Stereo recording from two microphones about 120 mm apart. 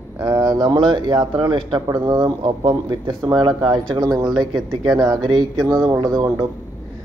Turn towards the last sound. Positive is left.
turn(degrees=-30)  # may be behind; listen again after turning